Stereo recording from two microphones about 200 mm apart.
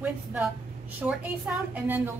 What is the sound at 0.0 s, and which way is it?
A woman's voice, 5° right (ahead or behind).